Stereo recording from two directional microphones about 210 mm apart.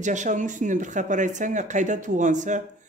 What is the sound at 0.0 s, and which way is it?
Speech, 35° right (ahead or behind).